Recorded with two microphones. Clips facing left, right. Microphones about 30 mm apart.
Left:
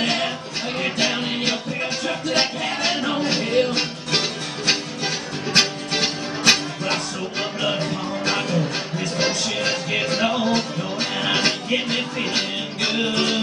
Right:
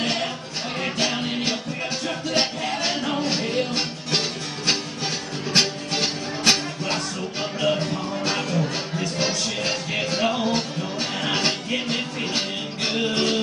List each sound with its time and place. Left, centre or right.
0.0 s music: centre